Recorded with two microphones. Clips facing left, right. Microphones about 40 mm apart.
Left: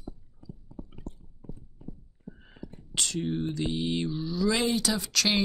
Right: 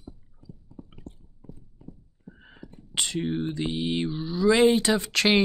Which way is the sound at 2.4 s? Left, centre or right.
Centre.